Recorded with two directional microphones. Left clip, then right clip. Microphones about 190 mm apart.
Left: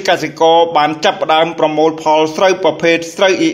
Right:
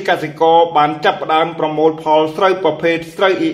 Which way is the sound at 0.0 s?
30° left (ahead or behind).